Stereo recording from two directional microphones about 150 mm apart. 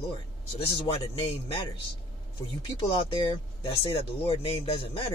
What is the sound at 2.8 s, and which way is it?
A man's voice, 35° left (ahead or behind).